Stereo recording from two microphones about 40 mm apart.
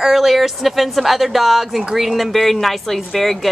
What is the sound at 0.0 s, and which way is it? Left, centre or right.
A woman's voice, centre.